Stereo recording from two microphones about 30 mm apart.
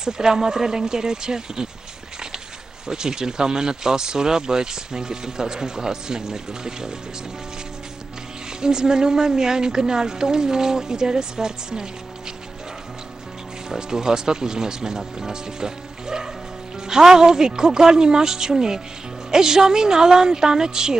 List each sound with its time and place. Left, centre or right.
0.0 s speech: centre
2.9 s speech: right
8.5 s speech: right
13.7 s speech: centre